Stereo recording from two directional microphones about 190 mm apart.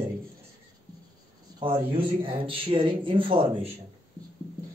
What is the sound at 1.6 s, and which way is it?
Speech, 25° right (ahead or behind).